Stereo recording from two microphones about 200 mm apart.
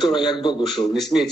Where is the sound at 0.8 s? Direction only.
Centre (ahead or behind).